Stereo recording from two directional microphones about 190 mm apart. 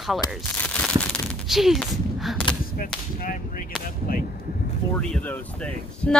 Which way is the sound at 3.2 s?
50° left (ahead or behind).